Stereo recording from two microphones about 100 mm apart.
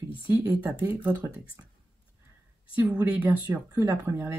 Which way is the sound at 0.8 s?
20° right (ahead or behind).